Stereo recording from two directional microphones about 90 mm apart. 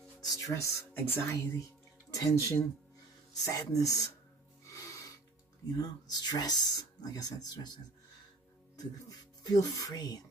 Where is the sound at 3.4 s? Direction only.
40° left (ahead or behind).